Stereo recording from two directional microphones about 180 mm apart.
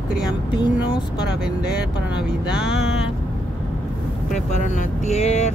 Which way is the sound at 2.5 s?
5° right (ahead or behind).